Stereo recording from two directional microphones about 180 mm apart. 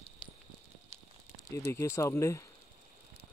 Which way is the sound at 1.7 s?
15° left (ahead or behind).